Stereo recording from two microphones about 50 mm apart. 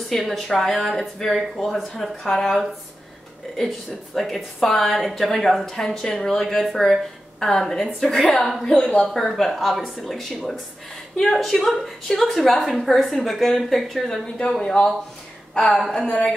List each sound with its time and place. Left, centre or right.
0.1 s a woman's voice: centre
3.5 s a woman's voice: centre
8.6 s speech: left
9.0 s a woman's voice: centre
15.9 s speech: left